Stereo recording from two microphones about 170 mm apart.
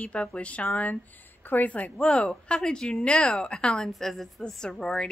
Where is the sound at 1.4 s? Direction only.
10° left (ahead or behind).